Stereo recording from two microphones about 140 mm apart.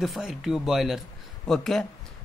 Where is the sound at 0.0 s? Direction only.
5° right (ahead or behind).